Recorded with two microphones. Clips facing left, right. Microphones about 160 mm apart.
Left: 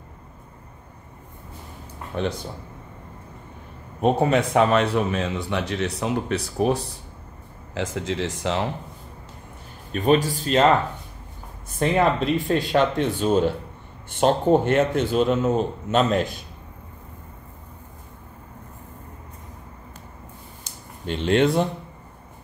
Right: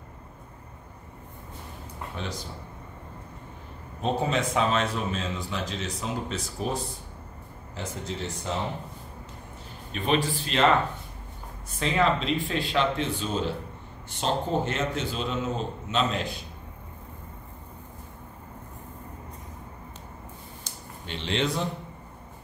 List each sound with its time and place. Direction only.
2.1 s speech: 55° left (ahead or behind)
4.0 s speech: 60° left (ahead or behind)
7.7 s speech: 90° left
9.9 s speech: 45° left (ahead or behind)
11.8 s speech: 50° left (ahead or behind)
21.1 s speech: 50° left (ahead or behind)